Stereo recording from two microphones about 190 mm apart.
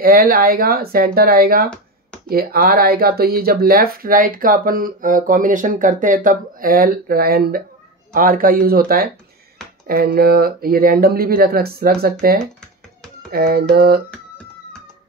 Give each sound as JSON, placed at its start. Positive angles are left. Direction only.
{"t": 0.0, "sound": "speech", "side_deg": -50}